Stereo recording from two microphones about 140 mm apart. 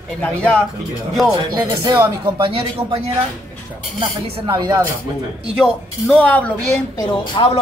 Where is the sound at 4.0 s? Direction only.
30° right (ahead or behind).